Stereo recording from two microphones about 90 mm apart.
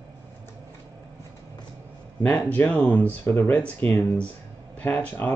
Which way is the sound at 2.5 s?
20° left (ahead or behind).